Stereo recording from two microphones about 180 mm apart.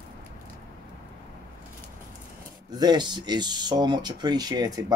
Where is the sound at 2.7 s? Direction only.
25° right (ahead or behind).